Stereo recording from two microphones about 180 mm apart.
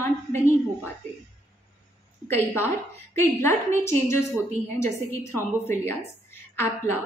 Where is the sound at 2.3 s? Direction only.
15° left (ahead or behind).